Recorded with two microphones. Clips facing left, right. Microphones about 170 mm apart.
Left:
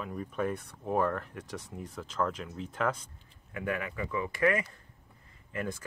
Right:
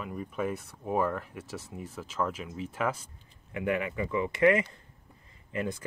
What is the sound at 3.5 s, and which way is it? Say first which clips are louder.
Speech: right 4 dB; 20° right (ahead or behind).